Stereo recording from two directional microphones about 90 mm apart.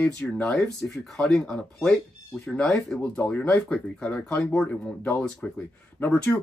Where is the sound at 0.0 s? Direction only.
10° left (ahead or behind).